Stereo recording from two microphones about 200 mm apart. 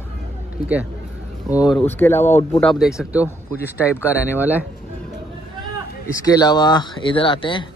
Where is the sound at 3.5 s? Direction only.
10° left (ahead or behind).